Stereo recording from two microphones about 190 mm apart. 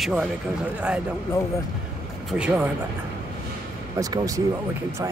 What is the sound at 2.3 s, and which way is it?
Speech, 5° right (ahead or behind).